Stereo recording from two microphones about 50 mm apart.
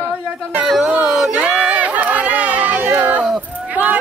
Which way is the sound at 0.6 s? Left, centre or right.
Centre.